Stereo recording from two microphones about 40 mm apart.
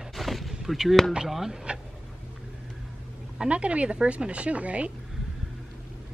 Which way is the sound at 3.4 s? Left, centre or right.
Right.